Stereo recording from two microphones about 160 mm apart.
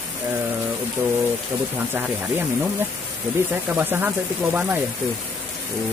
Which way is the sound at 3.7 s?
10° right (ahead or behind).